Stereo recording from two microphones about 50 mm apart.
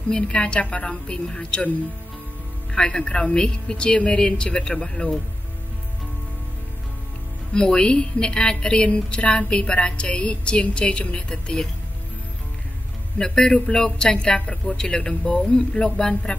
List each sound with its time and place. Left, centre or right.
0.1 s speech: centre
2.7 s a man's voice: centre
7.5 s speech: centre
13.2 s a man's voice: centre